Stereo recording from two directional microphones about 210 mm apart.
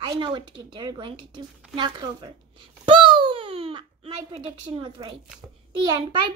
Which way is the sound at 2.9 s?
25° right (ahead or behind).